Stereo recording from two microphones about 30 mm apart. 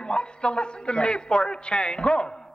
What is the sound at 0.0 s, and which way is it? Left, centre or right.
A man's voice, left.